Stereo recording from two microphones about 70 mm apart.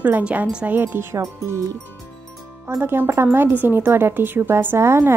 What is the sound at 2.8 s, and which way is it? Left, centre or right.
A woman's voice, right.